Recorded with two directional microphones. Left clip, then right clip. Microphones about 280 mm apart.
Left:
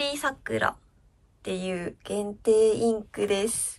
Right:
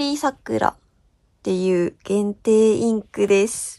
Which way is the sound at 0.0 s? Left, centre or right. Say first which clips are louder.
Right 5 dB; centre.